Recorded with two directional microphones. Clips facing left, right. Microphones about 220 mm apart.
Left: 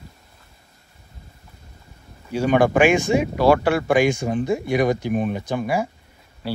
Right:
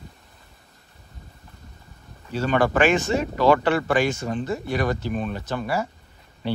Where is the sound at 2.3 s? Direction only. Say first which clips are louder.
Left 4 dB; 15° left (ahead or behind).